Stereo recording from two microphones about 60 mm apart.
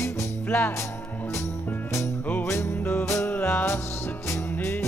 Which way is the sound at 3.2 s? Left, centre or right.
Left.